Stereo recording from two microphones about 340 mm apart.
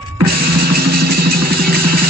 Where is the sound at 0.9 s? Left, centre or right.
Right.